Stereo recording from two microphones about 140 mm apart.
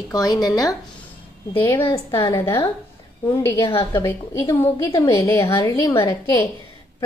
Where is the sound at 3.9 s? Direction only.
20° left (ahead or behind).